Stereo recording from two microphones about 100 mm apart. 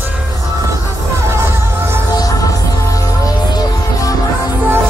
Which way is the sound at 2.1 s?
35° left (ahead or behind).